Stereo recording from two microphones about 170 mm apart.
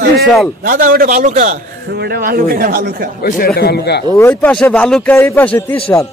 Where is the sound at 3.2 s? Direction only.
65° left (ahead or behind).